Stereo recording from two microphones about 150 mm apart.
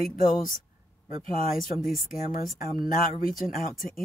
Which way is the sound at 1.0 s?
65° left (ahead or behind).